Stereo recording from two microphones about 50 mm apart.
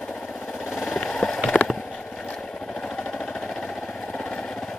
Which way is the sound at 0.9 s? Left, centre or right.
Centre.